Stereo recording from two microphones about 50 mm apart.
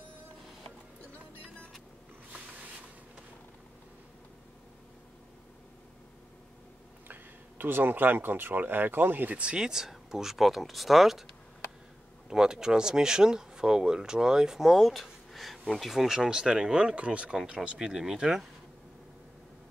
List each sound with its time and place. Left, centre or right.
7.1 s speech: right
9.3 s speech: right; by 11.2 s centre
12.3 s speech: centre
17.7 s speech: centre